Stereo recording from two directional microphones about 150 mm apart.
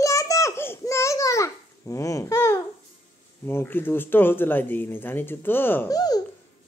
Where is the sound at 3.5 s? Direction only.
15° left (ahead or behind).